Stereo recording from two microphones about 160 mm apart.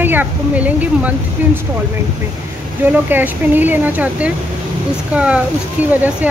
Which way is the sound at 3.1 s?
10° right (ahead or behind).